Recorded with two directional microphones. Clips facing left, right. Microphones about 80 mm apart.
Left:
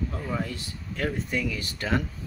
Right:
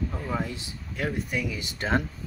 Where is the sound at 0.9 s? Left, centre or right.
Centre; by 2.0 s right.